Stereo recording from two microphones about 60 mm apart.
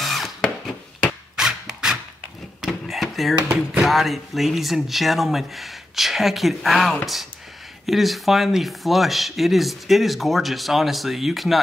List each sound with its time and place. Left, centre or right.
0.0 s tools: centre
1.3 s a sound: centre
3.3 s speech: right
3.8 s speech: centre